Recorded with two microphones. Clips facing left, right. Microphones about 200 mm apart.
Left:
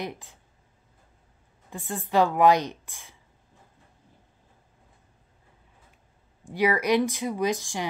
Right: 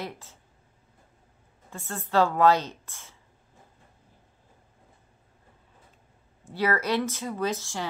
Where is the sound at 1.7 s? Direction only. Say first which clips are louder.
Left 1 dB; 15° left (ahead or behind).